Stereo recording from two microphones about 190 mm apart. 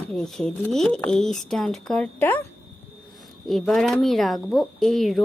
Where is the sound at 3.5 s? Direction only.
Centre (ahead or behind).